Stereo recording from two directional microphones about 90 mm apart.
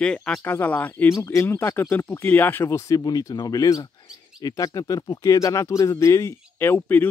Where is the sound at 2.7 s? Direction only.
35° left (ahead or behind).